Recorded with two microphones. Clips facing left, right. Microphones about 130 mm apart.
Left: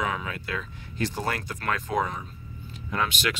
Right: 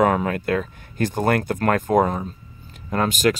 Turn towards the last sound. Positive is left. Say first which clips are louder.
# right 8 dB
turn(degrees=-45)  # may be behind; listen again after turning